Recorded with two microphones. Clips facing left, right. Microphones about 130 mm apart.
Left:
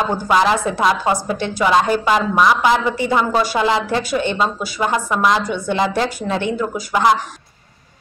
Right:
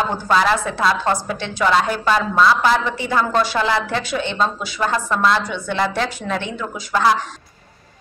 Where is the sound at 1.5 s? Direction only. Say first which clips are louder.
Left 2 dB; 15° left (ahead or behind).